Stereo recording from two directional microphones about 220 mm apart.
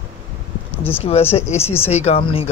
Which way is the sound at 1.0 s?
25° left (ahead or behind).